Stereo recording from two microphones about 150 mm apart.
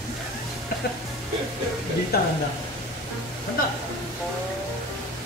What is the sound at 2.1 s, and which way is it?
Speech, 90° left.